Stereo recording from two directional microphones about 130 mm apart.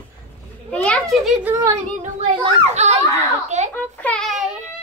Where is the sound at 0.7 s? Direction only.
10° left (ahead or behind).